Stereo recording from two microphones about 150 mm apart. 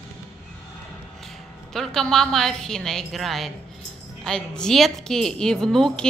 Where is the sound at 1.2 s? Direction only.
Centre (ahead or behind).